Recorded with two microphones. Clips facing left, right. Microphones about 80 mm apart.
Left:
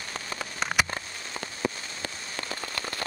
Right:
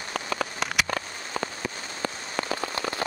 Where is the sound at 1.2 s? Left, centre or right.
Right.